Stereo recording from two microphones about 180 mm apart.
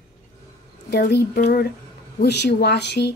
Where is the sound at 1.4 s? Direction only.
50° left (ahead or behind).